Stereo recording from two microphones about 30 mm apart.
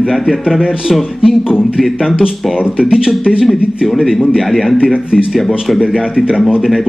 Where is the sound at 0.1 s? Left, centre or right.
Centre.